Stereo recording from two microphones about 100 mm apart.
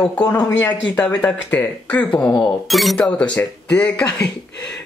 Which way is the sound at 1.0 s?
10° left (ahead or behind).